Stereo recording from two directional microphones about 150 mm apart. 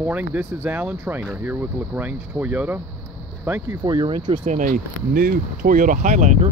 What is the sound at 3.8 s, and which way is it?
Speech, 30° right (ahead or behind).